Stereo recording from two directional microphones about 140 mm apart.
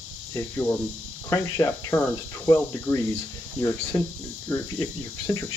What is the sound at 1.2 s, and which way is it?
Speech, 20° left (ahead or behind).